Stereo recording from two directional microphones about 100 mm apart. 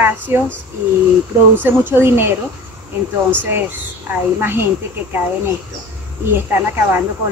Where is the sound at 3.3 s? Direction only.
20° right (ahead or behind).